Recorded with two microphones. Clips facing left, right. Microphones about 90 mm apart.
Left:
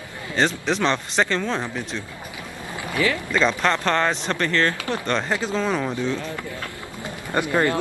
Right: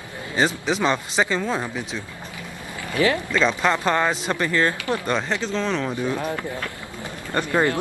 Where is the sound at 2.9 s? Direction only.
25° right (ahead or behind).